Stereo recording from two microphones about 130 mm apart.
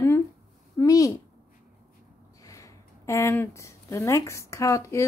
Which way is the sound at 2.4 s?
25° left (ahead or behind).